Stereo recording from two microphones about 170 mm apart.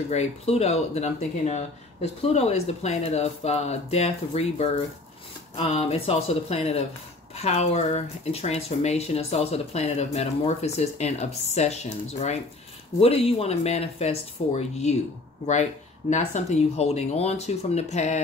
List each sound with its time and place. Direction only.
0.1 s speech: 40° left (ahead or behind)